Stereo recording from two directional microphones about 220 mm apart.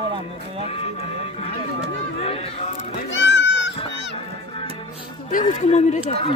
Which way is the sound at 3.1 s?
55° left (ahead or behind).